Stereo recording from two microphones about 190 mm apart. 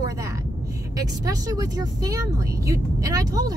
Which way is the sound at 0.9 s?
20° right (ahead or behind).